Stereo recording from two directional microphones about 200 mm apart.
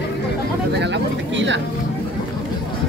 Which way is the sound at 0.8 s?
60° right (ahead or behind).